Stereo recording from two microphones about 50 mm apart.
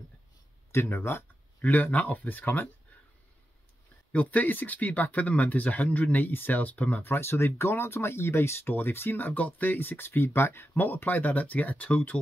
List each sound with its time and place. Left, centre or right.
0.7 s speech: left
1.6 s speech: left
4.1 s speech: left
7.0 s speech: left
10.8 s speech: left